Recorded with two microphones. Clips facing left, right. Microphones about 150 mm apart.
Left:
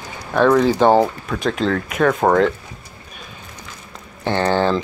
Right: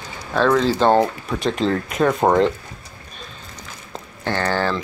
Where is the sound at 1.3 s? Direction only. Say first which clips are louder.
Even; centre (ahead or behind).